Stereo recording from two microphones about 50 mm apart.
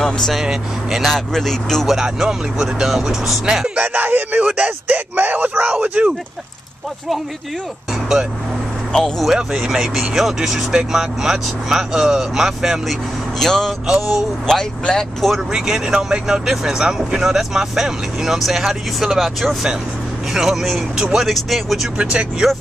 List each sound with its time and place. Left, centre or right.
0.0 s speech: centre
0.4 s speech: centre
1.0 s speech: centre
1.9 s speech: centre
3.6 s speech: right
9.2 s speech: centre
13.4 s speech: centre
13.8 s speech: centre
14.5 s speech: centre
15.3 s speech: centre